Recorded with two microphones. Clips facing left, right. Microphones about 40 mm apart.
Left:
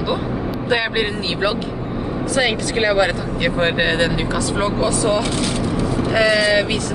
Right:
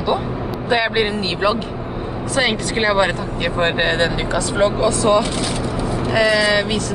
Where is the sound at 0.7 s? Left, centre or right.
Centre.